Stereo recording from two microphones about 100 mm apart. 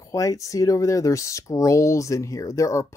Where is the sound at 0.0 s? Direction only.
35° left (ahead or behind).